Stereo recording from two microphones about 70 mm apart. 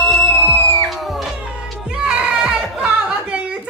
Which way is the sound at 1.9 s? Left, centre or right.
Centre.